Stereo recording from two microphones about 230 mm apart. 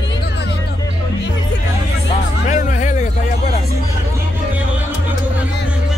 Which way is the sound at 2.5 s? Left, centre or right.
Left.